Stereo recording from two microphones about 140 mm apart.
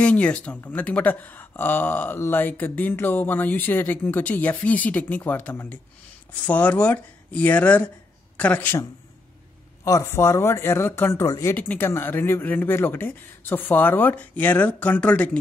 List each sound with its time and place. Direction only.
0.0 s speech: 10° left (ahead or behind)
9.8 s speech: 25° left (ahead or behind)